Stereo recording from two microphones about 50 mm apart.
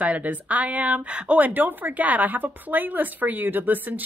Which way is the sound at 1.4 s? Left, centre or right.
Right.